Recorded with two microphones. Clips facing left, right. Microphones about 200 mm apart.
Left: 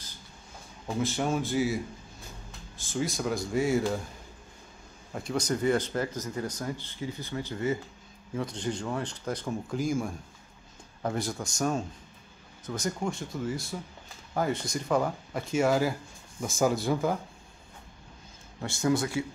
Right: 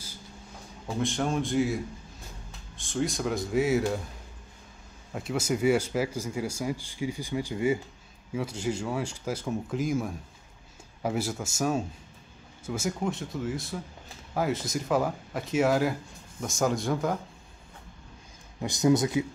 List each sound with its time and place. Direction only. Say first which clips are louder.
0.8 s speech: even; 5° left (ahead or behind)
2.8 s speech: right 2 dB; centre (ahead or behind)
5.1 s speech: right 1 dB; 5° right (ahead or behind)
18.6 s speech: right 4 dB; 20° right (ahead or behind)